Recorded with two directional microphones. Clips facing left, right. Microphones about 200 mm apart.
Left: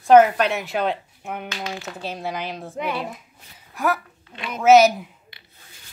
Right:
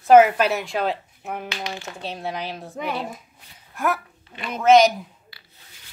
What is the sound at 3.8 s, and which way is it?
Speech, centre (ahead or behind).